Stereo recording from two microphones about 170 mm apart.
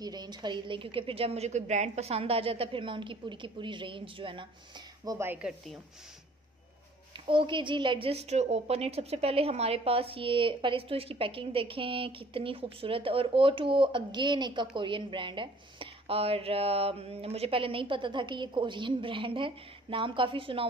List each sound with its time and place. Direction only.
0.0 s a woman's voice: 25° right (ahead or behind)
5.0 s speech: 15° right (ahead or behind)
7.2 s a woman's voice: 30° right (ahead or behind)